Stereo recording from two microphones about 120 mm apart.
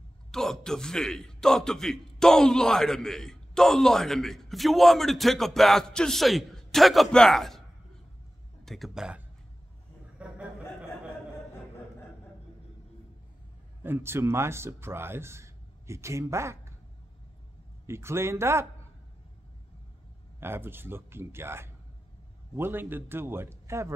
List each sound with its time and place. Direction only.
0.3 s a man's voice: 5° left (ahead or behind)
8.6 s a man's voice: centre (ahead or behind)
10.2 s a sound: 10° right (ahead or behind)
13.8 s speech: 20° right (ahead or behind)
17.8 s a man's voice: 20° right (ahead or behind)
20.3 s a man's voice: 20° right (ahead or behind)